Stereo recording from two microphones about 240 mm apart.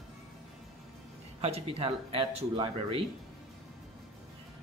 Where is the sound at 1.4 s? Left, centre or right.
Right.